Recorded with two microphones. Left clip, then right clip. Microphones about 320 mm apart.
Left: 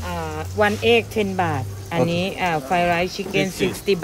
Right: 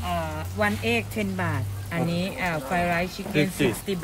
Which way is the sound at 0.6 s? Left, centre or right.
Centre.